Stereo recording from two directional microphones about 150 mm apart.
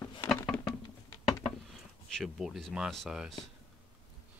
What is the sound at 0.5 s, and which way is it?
Music, 5° left (ahead or behind).